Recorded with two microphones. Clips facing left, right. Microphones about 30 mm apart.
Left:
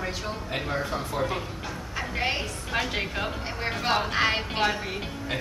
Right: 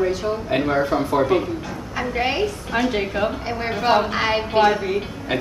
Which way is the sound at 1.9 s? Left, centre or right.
Centre.